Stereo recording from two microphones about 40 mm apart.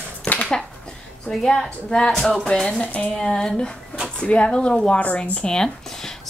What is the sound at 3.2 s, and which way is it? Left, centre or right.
Speech, centre.